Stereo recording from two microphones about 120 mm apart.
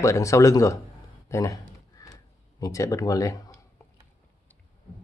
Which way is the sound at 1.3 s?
30° left (ahead or behind).